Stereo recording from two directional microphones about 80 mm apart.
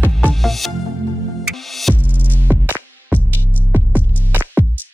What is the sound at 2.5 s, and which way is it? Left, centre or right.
Music, right.